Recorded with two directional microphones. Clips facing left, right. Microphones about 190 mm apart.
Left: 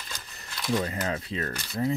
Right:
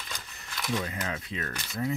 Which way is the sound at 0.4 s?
35° left (ahead or behind).